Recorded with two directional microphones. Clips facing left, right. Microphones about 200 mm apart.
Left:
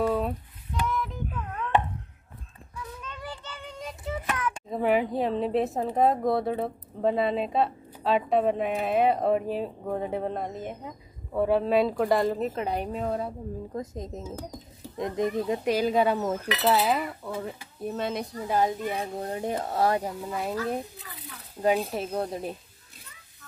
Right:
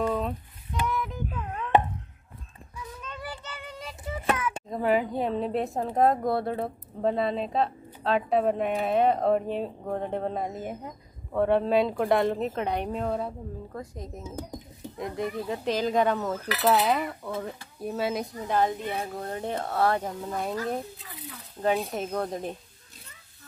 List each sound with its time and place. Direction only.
0.0 s a sound: 10° left (ahead or behind)
0.8 s child singing: centre (ahead or behind)
1.3 s a sound: 20° right (ahead or behind)
3.1 s child singing: 5° right (ahead or behind)
4.4 s a child's voice: centre (ahead or behind)
13.7 s speech: 20° left (ahead or behind)
15.6 s a child's voice: 10° left (ahead or behind)
18.5 s a child's voice: 15° left (ahead or behind)